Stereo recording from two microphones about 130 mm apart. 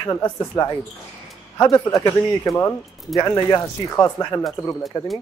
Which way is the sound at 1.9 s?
20° left (ahead or behind).